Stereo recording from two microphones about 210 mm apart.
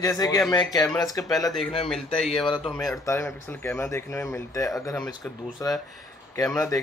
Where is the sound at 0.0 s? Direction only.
15° left (ahead or behind).